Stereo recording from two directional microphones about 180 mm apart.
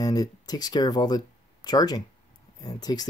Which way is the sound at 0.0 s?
20° left (ahead or behind).